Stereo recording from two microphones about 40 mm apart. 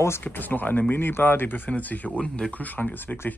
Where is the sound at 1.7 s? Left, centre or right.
Left.